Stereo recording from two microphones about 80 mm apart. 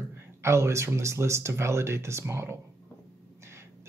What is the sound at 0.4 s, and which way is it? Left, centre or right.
Speech, right.